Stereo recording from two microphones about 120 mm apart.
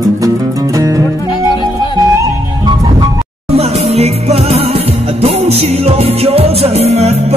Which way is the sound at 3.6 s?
60° right (ahead or behind).